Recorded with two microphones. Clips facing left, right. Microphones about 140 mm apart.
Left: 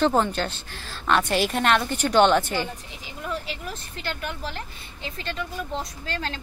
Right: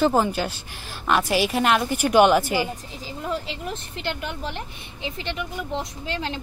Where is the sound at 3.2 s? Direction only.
25° right (ahead or behind).